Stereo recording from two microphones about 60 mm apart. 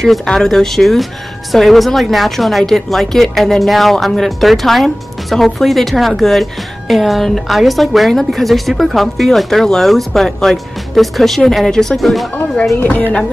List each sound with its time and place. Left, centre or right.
0.0 s speech: centre
12.7 s speech: left